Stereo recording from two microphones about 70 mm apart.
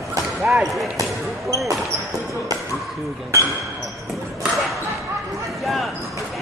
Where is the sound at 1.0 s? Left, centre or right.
Right.